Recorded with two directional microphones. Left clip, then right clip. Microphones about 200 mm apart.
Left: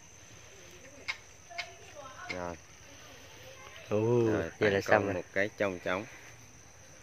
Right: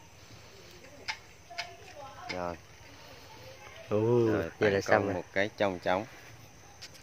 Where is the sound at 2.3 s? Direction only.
15° left (ahead or behind).